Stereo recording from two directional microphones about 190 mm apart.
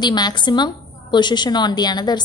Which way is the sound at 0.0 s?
20° left (ahead or behind).